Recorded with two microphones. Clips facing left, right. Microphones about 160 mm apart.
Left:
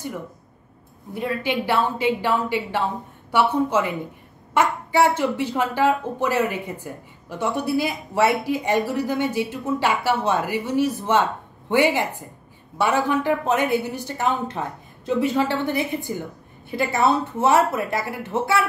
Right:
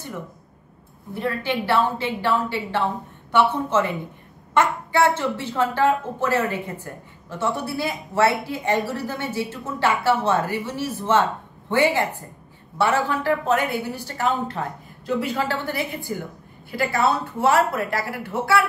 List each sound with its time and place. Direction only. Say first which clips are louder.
1.1 s a woman's voice: left 1 dB; 15° left (ahead or behind)